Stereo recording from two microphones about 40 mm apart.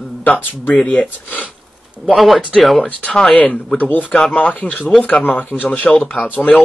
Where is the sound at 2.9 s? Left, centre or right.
Left.